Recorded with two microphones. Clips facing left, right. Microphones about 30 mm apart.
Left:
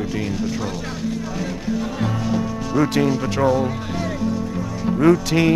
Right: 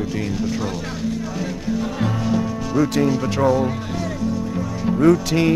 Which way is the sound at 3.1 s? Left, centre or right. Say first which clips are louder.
Even; centre.